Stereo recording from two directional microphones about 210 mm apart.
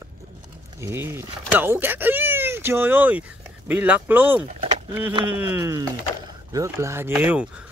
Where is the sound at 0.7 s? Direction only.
10° right (ahead or behind).